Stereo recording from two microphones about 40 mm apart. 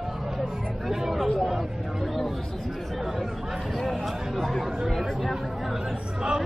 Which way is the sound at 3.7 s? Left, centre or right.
Centre.